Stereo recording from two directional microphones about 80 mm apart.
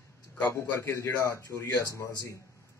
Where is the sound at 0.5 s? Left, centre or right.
Left.